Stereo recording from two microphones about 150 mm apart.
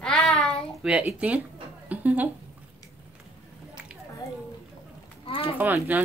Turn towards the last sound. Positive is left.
turn(degrees=-10)  # may be behind; listen again after turning